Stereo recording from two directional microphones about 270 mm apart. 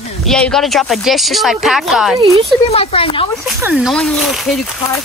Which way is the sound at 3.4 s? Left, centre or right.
Centre.